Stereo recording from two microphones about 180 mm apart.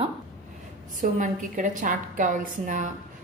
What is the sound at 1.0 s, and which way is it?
A woman's voice, 45° right (ahead or behind).